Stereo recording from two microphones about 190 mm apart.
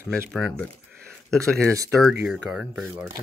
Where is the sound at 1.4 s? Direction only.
15° right (ahead or behind).